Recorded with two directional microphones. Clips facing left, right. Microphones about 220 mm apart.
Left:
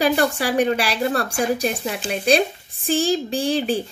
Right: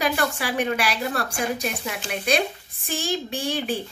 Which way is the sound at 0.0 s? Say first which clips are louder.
Left 5 dB; 35° left (ahead or behind).